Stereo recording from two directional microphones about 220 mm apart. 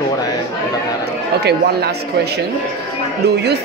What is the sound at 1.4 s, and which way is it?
A man's voice, 45° right (ahead or behind).